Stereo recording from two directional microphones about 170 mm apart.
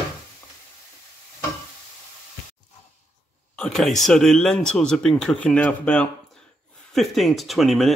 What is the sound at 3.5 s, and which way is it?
Speech, 5° left (ahead or behind).